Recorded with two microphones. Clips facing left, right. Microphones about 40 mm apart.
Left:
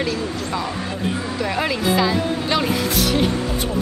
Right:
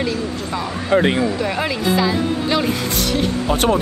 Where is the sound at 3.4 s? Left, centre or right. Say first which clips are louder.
Right 7 dB; right.